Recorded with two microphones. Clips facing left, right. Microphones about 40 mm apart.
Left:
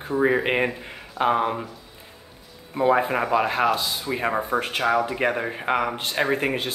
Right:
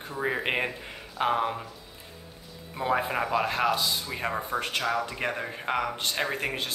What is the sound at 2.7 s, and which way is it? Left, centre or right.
Speech, centre.